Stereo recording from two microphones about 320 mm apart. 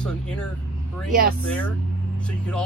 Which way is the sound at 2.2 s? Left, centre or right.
Centre.